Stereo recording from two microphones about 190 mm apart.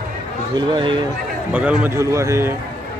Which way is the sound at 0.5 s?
25° right (ahead or behind).